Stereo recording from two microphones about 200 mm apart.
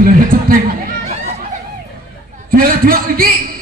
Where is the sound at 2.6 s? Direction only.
45° right (ahead or behind).